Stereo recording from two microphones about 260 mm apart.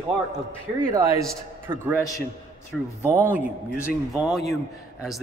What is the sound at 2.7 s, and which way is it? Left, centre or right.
Speech, centre.